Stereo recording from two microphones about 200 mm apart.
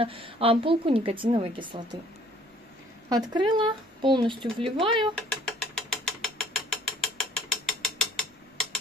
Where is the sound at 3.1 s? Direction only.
20° right (ahead or behind).